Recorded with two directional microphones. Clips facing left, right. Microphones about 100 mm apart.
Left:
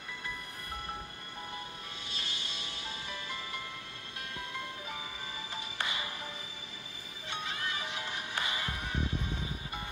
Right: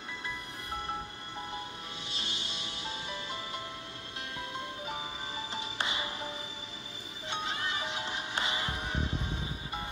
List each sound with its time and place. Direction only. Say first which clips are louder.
2.0 s music: right 2 dB; 20° right (ahead or behind)